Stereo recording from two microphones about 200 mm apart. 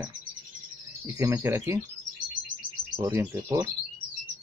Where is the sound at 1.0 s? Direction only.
15° right (ahead or behind).